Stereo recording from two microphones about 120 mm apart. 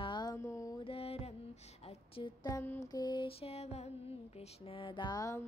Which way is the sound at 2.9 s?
35° left (ahead or behind).